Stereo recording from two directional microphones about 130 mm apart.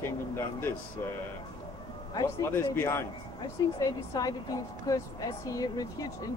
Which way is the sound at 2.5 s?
20° left (ahead or behind).